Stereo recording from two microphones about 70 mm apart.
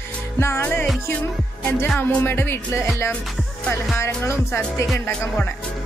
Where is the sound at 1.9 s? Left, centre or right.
Left.